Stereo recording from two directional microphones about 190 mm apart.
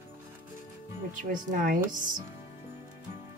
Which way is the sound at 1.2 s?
45° right (ahead or behind).